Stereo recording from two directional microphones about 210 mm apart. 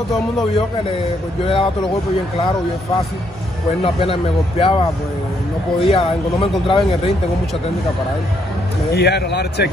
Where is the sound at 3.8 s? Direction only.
25° left (ahead or behind).